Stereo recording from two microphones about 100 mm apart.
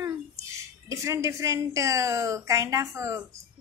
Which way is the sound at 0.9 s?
30° right (ahead or behind).